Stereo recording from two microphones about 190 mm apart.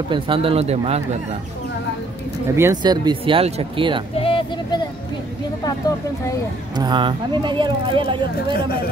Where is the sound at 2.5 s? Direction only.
15° right (ahead or behind).